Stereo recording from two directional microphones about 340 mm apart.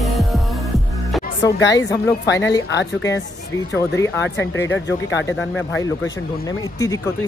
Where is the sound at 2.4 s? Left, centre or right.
Centre.